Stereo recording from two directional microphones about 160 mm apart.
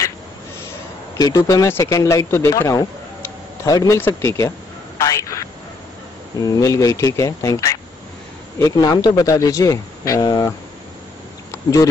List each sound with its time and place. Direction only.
1.1 s speech: 20° left (ahead or behind)
5.0 s a sound: 20° left (ahead or behind)
6.4 s speech: 20° left (ahead or behind)
11.5 s speech: 20° left (ahead or behind)